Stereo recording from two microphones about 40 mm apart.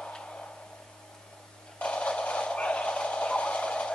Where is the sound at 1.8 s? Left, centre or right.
Left.